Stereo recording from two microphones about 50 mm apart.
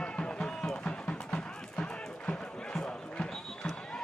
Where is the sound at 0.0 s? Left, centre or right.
Left.